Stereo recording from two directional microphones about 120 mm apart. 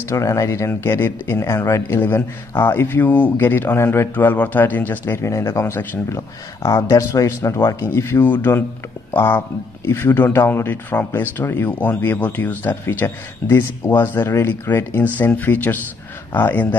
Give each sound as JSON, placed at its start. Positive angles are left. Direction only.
{"t": 0.1, "sound": "speech", "side_deg": 25}